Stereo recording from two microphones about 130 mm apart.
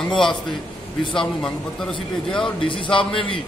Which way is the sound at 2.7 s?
40° left (ahead or behind).